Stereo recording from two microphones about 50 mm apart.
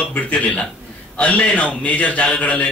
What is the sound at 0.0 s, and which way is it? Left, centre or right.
A man's voice, left.